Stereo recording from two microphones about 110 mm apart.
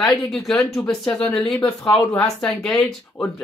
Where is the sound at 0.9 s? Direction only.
5° left (ahead or behind).